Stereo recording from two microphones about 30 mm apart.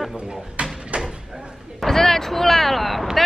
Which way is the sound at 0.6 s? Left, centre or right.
Right.